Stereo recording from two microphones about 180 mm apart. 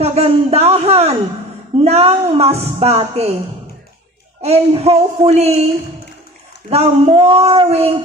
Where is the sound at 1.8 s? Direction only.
35° right (ahead or behind).